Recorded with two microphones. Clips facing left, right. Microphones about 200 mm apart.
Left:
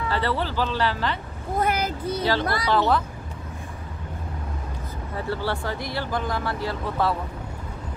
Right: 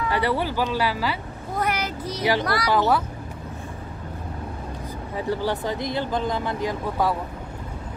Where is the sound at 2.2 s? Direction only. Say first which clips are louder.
Right 3 dB; 15° right (ahead or behind).